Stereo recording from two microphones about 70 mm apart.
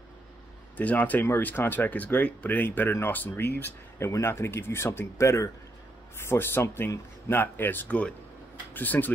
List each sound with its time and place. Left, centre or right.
0.7 s speech: left
4.0 s speech: left